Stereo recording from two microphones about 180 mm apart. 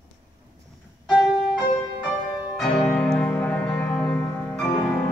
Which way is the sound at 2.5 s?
Centre (ahead or behind).